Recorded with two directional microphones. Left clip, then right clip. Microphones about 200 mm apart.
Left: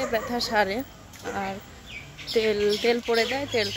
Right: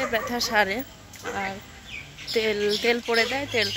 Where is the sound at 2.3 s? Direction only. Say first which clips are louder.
Left 1 dB; 5° left (ahead or behind).